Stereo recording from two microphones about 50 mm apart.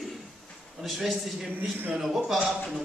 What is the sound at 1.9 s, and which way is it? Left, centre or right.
Speech, centre.